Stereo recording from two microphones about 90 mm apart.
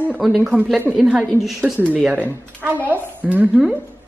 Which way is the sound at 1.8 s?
15° right (ahead or behind).